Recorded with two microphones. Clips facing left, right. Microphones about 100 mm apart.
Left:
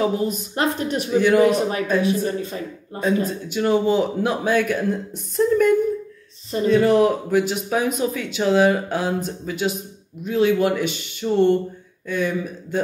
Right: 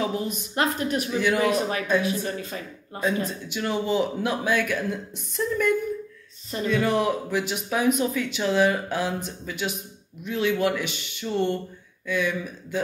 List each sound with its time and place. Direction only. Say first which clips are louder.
0.0 s a man's voice: left 6 dB; 45° left (ahead or behind)